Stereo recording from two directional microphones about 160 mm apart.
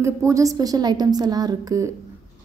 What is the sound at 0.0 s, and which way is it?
A woman's voice, 20° right (ahead or behind).